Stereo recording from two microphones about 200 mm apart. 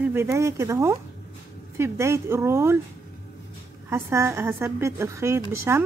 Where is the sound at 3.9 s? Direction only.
15° right (ahead or behind).